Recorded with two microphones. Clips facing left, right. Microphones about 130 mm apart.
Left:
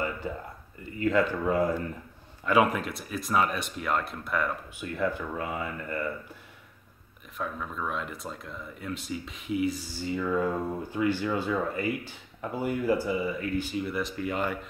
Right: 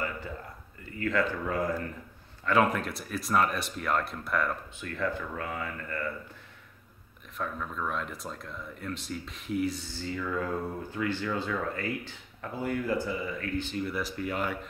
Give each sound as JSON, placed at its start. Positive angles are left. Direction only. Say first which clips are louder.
{"t": 0.9, "sound": "speech", "louder": "left 4 dB", "side_deg": 20}
{"t": 4.7, "sound": "speech", "louder": "left 3 dB", "side_deg": 15}
{"t": 7.3, "sound": "speech", "louder": "left 1 dB", "side_deg": 5}